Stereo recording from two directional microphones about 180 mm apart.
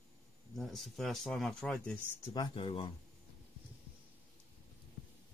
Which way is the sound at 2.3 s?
30° left (ahead or behind).